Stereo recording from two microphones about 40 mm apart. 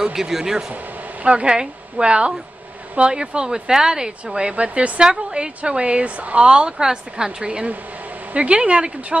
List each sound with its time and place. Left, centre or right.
0.0 s speech: centre
1.2 s a woman's voice: right